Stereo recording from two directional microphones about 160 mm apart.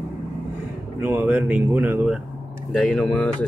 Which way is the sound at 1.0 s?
10° right (ahead or behind).